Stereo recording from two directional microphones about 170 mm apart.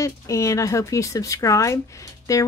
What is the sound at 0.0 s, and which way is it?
A woman's voice, 20° left (ahead or behind).